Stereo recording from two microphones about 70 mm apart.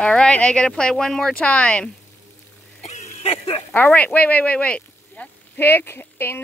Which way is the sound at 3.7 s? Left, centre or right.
Left.